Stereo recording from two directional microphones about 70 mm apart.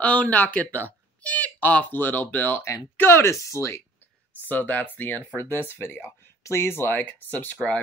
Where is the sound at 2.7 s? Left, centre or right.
Left.